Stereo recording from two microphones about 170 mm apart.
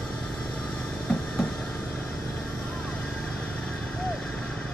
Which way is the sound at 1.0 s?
5° left (ahead or behind).